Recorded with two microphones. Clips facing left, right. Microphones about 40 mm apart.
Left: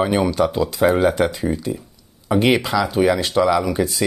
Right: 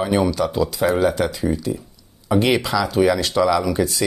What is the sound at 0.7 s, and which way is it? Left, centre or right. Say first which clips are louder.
Speech: left 3 dB; centre.